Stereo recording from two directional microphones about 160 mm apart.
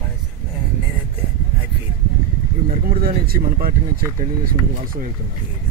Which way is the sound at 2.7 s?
65° right (ahead or behind).